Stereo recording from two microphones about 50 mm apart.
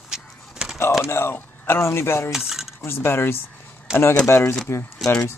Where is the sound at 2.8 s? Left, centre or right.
Left.